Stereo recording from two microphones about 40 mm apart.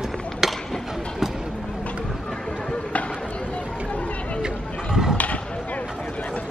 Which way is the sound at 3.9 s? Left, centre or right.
Left.